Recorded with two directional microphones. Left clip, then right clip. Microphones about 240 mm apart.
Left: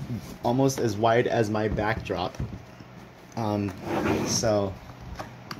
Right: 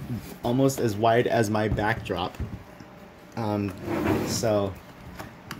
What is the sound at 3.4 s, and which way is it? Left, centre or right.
Speech, centre.